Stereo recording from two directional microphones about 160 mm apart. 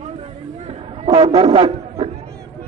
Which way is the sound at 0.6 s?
40° right (ahead or behind).